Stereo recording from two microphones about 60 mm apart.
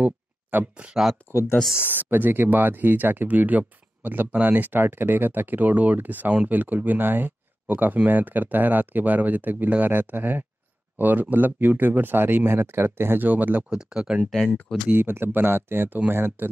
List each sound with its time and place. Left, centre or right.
0.0 s a sound: right
1.3 s speech: left
1.8 s speech: right
13.7 s speech: centre
14.9 s speech: right